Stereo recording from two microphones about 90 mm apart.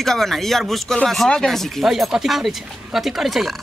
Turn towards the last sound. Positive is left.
turn(degrees=0)  # may be behind; listen again after turning